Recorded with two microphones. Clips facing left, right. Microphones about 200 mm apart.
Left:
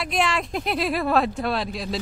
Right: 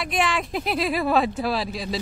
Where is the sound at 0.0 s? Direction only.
Centre (ahead or behind).